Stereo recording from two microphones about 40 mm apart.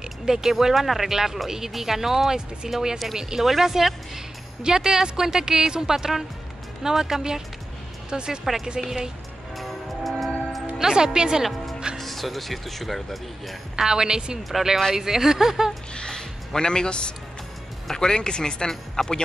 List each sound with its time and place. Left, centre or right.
0.2 s speech: centre
8.8 s speech: centre
10.8 s speech: centre
12.0 s speech: centre
13.7 s speech: centre
15.9 s speech: left